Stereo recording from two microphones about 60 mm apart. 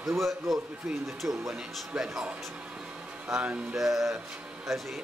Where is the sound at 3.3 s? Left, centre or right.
Centre.